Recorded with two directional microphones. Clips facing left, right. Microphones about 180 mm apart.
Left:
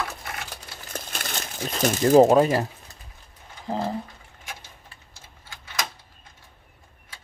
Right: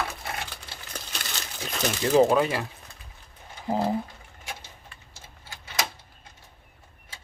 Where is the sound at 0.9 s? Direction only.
50° left (ahead or behind).